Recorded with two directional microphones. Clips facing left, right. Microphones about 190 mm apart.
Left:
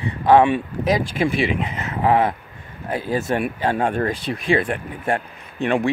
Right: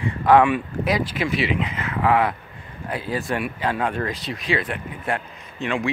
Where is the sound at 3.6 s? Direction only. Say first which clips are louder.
Left 4 dB; 45° left (ahead or behind).